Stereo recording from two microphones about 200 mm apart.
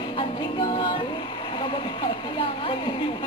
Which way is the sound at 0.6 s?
25° left (ahead or behind).